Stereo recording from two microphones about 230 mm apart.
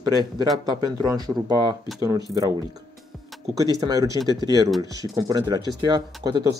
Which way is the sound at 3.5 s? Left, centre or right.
Centre.